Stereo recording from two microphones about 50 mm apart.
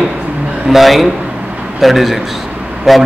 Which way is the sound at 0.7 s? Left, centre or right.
Centre.